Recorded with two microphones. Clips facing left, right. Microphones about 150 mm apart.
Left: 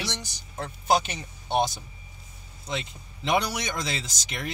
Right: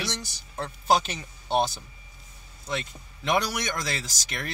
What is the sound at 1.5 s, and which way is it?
Speech, 15° left (ahead or behind).